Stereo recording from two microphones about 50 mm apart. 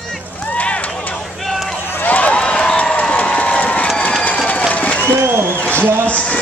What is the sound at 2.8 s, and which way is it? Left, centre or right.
Crowd, left.